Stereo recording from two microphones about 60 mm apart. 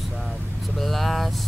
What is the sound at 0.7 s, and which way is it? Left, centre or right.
Speech, centre.